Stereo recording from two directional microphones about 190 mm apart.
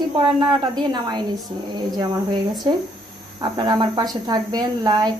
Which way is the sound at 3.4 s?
20° right (ahead or behind).